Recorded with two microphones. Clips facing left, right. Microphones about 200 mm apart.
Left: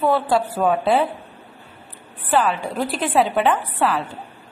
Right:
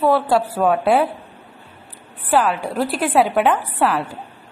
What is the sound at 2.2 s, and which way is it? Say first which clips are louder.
A woman's voice: right 2 dB; 10° right (ahead or behind).